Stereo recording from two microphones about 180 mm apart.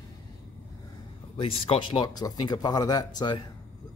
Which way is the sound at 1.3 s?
30° left (ahead or behind).